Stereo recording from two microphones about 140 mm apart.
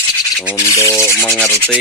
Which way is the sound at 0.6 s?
20° left (ahead or behind).